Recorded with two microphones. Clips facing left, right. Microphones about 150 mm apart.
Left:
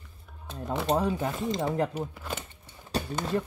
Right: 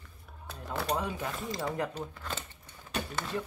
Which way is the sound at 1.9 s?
10° left (ahead or behind).